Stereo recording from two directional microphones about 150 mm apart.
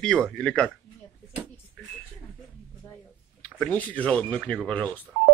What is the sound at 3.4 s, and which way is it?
Speech, 10° left (ahead or behind).